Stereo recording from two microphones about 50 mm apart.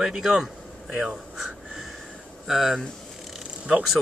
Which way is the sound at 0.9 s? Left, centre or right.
Centre.